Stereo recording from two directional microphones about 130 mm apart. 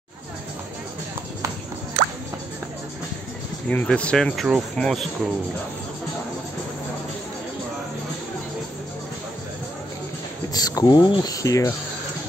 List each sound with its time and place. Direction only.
3.6 s speech: 10° left (ahead or behind)
10.5 s speech: 30° left (ahead or behind)